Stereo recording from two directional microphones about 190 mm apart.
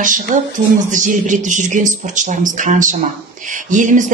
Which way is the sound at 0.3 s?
40° right (ahead or behind).